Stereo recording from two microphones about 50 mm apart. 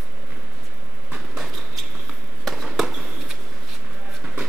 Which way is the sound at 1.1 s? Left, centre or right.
Centre.